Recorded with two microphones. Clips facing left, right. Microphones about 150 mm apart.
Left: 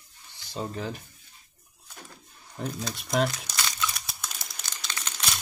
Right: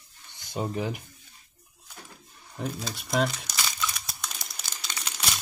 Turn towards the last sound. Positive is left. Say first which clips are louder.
# even
turn(degrees=-10)  # may be behind; listen again after turning